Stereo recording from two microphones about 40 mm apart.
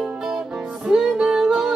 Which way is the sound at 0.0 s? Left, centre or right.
Centre.